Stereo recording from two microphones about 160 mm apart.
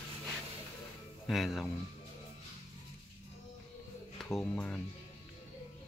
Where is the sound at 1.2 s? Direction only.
Centre (ahead or behind).